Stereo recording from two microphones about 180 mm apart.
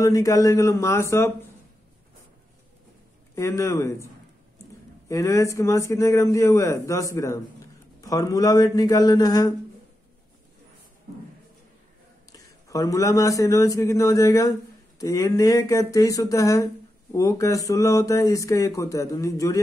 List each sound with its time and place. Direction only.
0.0 s speech: 20° left (ahead or behind)
3.3 s speech: 15° left (ahead or behind)
5.0 s speech: 15° left (ahead or behind)
12.6 s speech: 20° left (ahead or behind)